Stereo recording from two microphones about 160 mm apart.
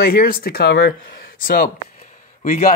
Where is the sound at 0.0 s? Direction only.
70° left (ahead or behind).